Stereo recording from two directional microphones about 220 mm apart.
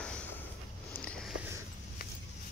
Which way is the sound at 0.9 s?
5° left (ahead or behind).